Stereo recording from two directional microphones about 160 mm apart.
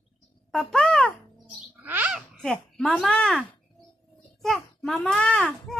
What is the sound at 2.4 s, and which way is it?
A child's voice, 5° left (ahead or behind).